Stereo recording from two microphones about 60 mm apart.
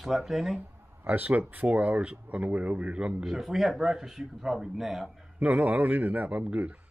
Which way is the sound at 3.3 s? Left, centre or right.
Centre.